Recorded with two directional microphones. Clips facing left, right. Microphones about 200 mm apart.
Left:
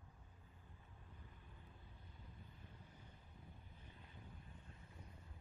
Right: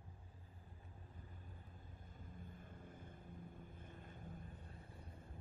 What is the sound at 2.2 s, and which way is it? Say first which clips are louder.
Vehicle: right 7 dB; 50° right (ahead or behind).